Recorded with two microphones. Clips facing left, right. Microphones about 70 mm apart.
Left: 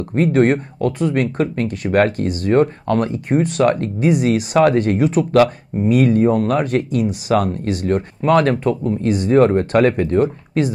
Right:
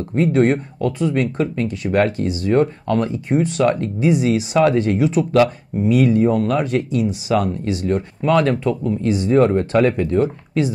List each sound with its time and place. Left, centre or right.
0.1 s speech: left